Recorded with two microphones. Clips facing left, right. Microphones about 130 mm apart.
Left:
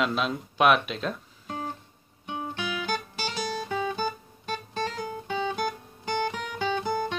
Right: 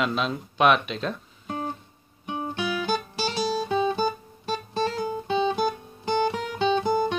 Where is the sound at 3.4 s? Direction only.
25° right (ahead or behind).